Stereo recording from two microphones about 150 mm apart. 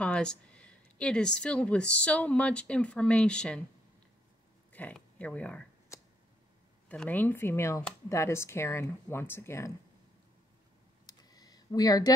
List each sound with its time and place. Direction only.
0.0 s speech: 5° left (ahead or behind)
4.7 s speech: 10° left (ahead or behind)
6.9 s speech: 10° left (ahead or behind)
11.1 s a sound: 25° left (ahead or behind)